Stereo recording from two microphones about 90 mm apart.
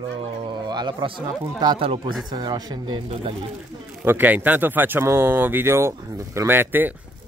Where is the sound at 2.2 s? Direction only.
50° right (ahead or behind).